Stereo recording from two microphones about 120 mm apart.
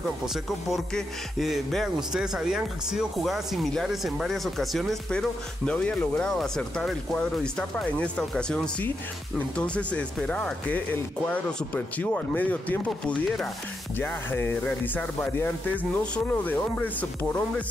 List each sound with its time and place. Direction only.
0.2 s speech: centre (ahead or behind)